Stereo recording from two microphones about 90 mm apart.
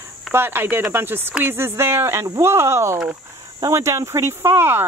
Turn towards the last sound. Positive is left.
turn(degrees=-25)  # may be behind; listen again after turning